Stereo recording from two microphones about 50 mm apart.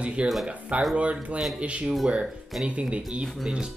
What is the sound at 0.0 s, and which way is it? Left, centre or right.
Speech, right.